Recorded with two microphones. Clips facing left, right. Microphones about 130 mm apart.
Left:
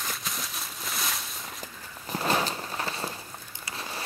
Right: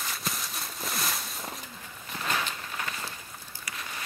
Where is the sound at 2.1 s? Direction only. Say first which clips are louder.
Left 5 dB; 35° left (ahead or behind).